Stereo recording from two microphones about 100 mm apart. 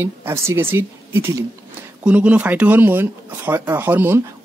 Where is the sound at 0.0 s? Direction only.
25° right (ahead or behind).